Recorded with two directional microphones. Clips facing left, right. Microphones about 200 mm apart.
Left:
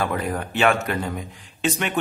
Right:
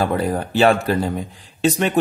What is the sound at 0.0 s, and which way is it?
Speech, 35° right (ahead or behind).